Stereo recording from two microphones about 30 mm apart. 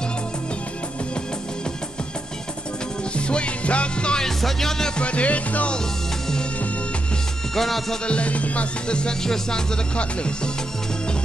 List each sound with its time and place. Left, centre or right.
3.2 s music: left
4.4 s music: centre
4.9 s music: left
7.5 s music: centre
8.1 s music: left
8.8 s music: left
9.2 s music: centre
9.9 s music: left